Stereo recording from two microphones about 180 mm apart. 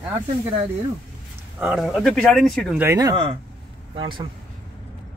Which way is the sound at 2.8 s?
20° right (ahead or behind).